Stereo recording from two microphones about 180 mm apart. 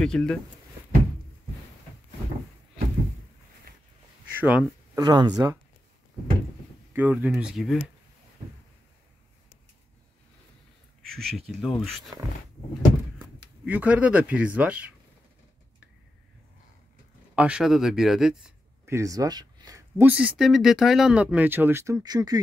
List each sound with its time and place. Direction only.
0.0 s speech: 5° left (ahead or behind)
4.4 s speech: 10° right (ahead or behind)
4.9 s speech: 25° right (ahead or behind)
6.9 s speech: 10° right (ahead or behind)
11.0 s speech: centre (ahead or behind)
13.7 s speech: 10° right (ahead or behind)
17.4 s speech: 5° right (ahead or behind)
18.9 s speech: 15° right (ahead or behind)
20.0 s speech: 10° right (ahead or behind)